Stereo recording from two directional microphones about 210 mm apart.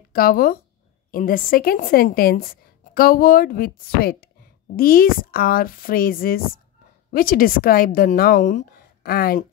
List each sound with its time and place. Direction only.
0.1 s a woman's voice: 45° left (ahead or behind)